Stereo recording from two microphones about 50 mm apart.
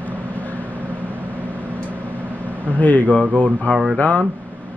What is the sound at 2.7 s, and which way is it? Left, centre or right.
Speech, left.